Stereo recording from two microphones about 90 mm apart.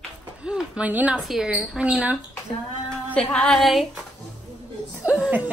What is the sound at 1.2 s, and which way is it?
Speech, 5° right (ahead or behind).